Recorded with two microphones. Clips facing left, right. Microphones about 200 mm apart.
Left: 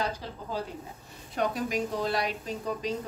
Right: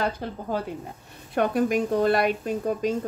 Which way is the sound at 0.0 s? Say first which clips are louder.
Right 5 dB; 55° right (ahead or behind).